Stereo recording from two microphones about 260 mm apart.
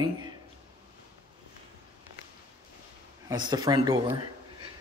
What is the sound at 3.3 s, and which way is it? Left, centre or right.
Speech, centre.